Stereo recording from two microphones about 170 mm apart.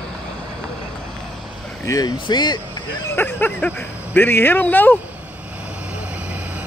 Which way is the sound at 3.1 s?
10° left (ahead or behind).